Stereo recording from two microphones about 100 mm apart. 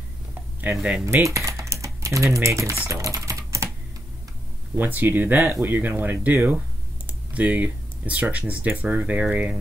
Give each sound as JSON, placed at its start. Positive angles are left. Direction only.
{"t": 0.3, "sound": "a sound", "side_deg": -20}
{"t": 0.7, "sound": "cutlery", "side_deg": -10}
{"t": 1.0, "sound": "typing", "side_deg": -30}
{"t": 4.7, "sound": "speech", "side_deg": -20}